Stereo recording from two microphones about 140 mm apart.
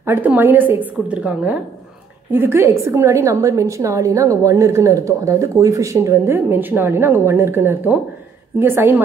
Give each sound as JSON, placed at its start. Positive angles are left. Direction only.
{"t": 0.0, "sound": "a woman's voice", "side_deg": -15}